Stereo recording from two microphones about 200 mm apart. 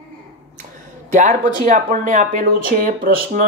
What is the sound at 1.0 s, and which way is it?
Speech, 40° right (ahead or behind).